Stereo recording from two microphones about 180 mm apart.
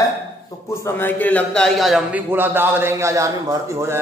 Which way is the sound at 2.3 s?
10° right (ahead or behind).